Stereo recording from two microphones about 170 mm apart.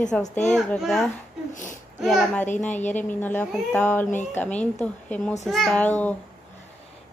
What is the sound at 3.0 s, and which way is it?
A woman's voice, 10° left (ahead or behind).